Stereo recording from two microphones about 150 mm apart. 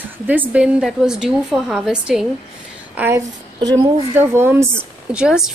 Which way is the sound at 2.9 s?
15° right (ahead or behind).